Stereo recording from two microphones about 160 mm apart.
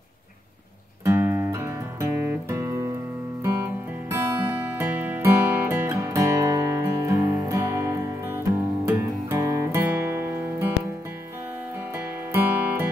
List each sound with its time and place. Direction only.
1.0 s music: 15° right (ahead or behind)
11.9 s music: 15° right (ahead or behind)